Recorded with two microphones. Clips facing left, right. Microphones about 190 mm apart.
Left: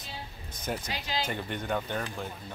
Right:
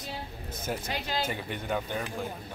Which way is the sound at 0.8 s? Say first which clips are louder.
Right 2 dB; 55° right (ahead or behind).